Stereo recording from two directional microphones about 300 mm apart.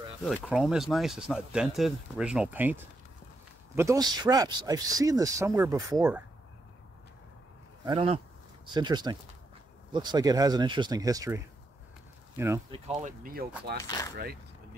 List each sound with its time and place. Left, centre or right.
0.2 s speech: centre
7.8 s speech: centre
12.8 s speech: right
13.8 s speech: centre